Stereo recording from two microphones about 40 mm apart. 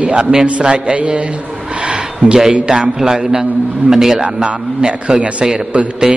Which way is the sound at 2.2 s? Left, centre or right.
Centre.